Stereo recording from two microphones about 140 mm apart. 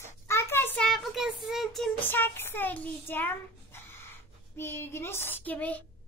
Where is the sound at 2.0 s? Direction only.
15° left (ahead or behind).